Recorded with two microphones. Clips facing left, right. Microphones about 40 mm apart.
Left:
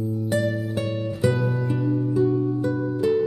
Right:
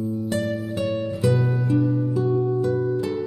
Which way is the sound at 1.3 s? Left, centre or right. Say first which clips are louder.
Right 3 dB; centre.